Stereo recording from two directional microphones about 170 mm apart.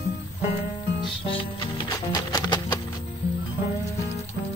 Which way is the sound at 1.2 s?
30° left (ahead or behind).